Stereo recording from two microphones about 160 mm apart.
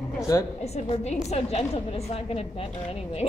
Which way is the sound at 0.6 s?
45° left (ahead or behind).